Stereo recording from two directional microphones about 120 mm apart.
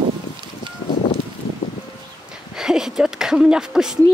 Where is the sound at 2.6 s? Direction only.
5° right (ahead or behind).